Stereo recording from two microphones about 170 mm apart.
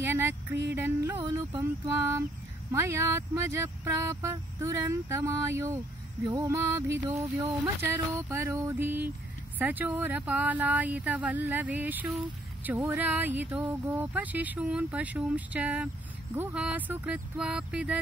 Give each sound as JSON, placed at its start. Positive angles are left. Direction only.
{"t": 0.0, "sound": "a sound", "side_deg": -10}
{"t": 0.7, "sound": "music", "side_deg": -15}
{"t": 1.5, "sound": "speech", "side_deg": -20}